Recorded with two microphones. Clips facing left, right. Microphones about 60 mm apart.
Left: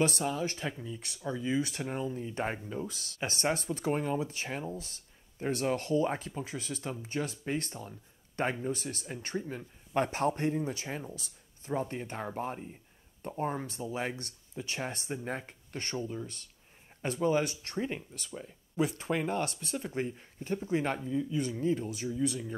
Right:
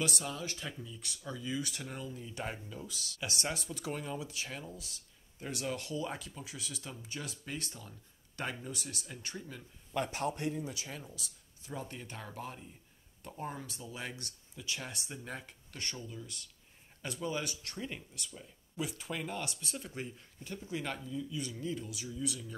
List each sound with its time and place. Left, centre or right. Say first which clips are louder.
0.0 s speech: left 7 dB; left